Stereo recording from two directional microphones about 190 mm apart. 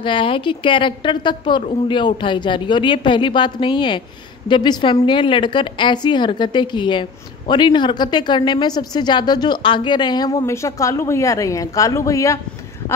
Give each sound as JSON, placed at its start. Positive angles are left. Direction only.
{"t": 0.0, "sound": "a woman's voice", "side_deg": 25}